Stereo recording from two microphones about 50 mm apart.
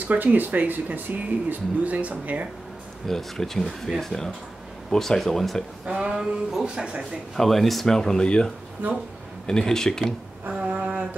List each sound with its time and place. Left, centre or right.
0.0 s speech: right
3.1 s speech: centre
5.9 s speech: centre
7.3 s speech: centre
9.5 s speech: centre
10.7 s a sound: right